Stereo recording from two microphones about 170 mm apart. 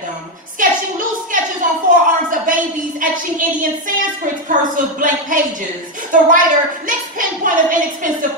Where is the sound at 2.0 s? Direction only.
50° right (ahead or behind).